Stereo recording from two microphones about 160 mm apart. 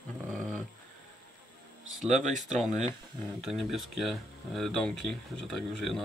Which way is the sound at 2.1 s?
50° right (ahead or behind).